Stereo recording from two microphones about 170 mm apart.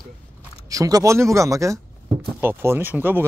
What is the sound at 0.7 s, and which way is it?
Speech, 20° right (ahead or behind).